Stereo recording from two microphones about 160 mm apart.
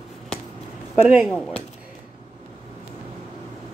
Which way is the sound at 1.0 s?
5° right (ahead or behind).